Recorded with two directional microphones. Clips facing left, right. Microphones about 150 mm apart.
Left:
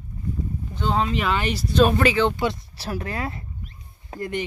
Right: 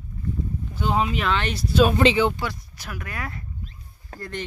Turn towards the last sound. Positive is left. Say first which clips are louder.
# left 6 dB
turn(degrees=20)  # may be behind; listen again after turning